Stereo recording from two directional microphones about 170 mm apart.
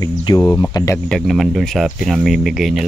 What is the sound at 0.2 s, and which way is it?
Speech, 20° left (ahead or behind).